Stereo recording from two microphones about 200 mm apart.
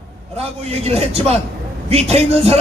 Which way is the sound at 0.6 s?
30° right (ahead or behind).